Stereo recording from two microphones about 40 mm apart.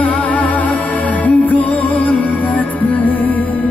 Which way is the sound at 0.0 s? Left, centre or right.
Left.